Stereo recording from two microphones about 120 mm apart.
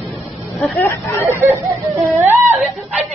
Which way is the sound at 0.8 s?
20° left (ahead or behind).